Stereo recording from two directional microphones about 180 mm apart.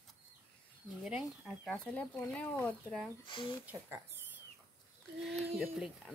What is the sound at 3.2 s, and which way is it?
Speech, 30° left (ahead or behind).